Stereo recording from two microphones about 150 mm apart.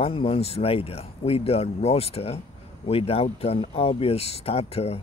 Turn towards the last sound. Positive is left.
turn(degrees=45)  # may be behind; listen again after turning